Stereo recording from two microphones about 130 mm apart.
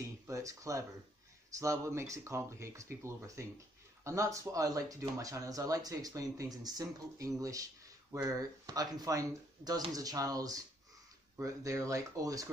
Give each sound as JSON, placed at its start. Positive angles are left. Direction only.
{"t": 0.3, "sound": "speech", "side_deg": -25}